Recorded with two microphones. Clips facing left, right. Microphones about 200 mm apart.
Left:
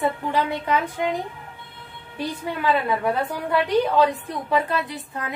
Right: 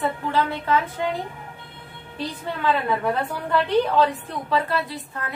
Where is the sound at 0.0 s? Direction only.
15° left (ahead or behind).